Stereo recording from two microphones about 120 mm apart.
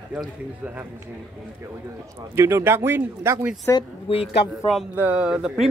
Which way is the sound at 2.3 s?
20° right (ahead or behind).